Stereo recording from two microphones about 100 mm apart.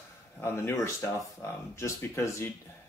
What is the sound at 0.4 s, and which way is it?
Speech, 25° left (ahead or behind).